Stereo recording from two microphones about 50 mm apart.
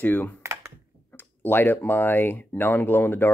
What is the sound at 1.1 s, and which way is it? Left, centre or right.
Speech, left.